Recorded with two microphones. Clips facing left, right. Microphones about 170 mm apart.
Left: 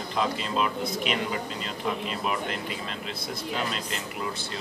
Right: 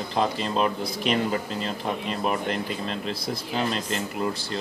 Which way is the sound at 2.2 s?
40° right (ahead or behind).